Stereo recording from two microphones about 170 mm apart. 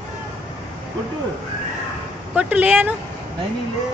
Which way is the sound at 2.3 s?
10° right (ahead or behind).